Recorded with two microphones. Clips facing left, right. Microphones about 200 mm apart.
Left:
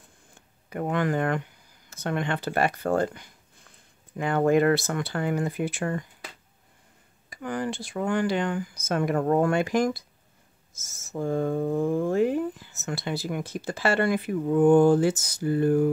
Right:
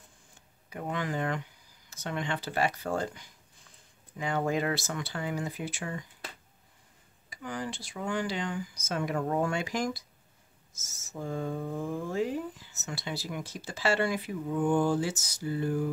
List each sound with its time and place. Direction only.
0.3 s a sound: 60° left (ahead or behind)
1.9 s speech: 55° left (ahead or behind)
7.2 s speech: 55° left (ahead or behind)